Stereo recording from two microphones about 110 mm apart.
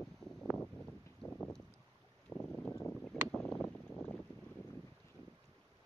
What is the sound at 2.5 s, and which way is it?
Boat, 10° left (ahead or behind).